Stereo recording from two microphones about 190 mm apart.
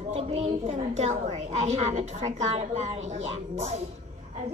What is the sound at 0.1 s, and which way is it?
A woman's voice, 30° right (ahead or behind).